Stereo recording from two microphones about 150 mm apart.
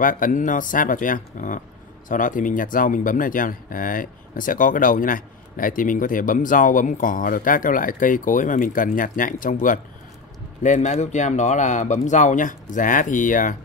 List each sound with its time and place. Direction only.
0.0 s speech: 65° left (ahead or behind)
10.6 s speech: 50° left (ahead or behind)